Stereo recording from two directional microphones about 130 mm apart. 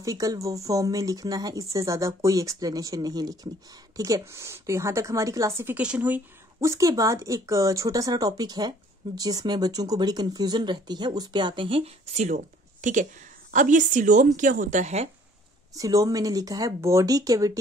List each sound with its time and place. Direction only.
0.0 s speech: 25° right (ahead or behind)
6.7 s speech: 25° right (ahead or behind); by 12.4 s 55° right (ahead or behind)
12.8 s a woman's voice: 75° right (ahead or behind)
15.7 s speech: 25° right (ahead or behind)